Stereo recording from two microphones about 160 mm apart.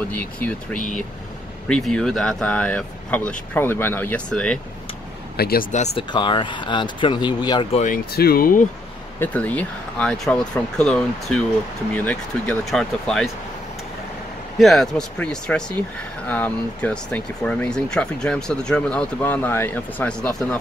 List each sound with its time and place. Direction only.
0.1 s speech: 10° left (ahead or behind)
5.4 s speech: 70° left (ahead or behind)
5.9 s speech: 30° left (ahead or behind)
7.8 s speech: 70° left (ahead or behind)
9.2 s speech: 10° left (ahead or behind)
14.6 s speech: centre (ahead or behind)